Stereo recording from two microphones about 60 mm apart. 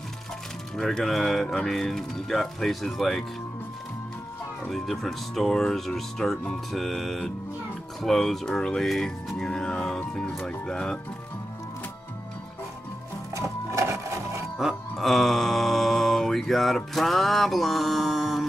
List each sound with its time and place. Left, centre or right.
0.7 s speech: centre
4.6 s speech: centre
13.7 s a sound: right
14.6 s mantra: centre